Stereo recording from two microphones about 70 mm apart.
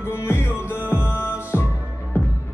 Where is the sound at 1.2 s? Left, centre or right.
Left.